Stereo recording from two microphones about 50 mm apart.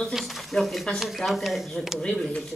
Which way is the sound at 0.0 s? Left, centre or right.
Centre.